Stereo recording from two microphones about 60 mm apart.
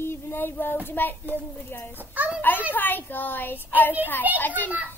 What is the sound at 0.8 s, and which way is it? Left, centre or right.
A woman's voice, left.